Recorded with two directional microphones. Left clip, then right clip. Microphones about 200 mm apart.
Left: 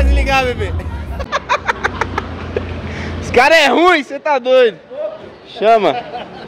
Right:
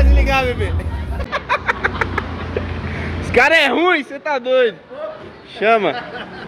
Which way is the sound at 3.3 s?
15° left (ahead or behind).